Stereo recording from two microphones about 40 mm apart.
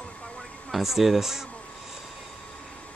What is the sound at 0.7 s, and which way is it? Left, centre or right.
Speech, centre.